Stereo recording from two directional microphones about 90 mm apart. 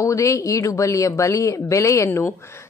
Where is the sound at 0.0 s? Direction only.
35° left (ahead or behind).